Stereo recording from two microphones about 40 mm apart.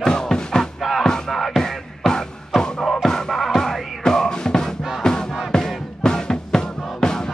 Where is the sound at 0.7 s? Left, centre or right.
Centre.